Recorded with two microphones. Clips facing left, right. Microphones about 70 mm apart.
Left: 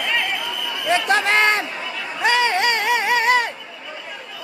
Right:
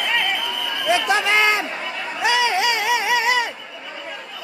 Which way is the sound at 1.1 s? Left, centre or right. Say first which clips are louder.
Left 2 dB; left.